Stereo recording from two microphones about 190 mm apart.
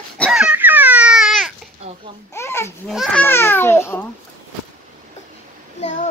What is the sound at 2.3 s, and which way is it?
Babbling, 15° left (ahead or behind).